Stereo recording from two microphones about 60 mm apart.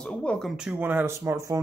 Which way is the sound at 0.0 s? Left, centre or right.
Centre.